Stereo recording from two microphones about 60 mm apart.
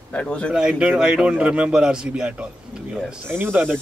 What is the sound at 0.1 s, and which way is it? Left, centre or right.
Speech, centre.